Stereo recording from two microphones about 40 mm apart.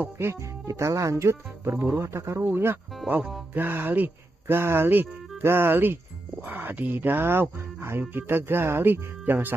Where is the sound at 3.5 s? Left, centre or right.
Right.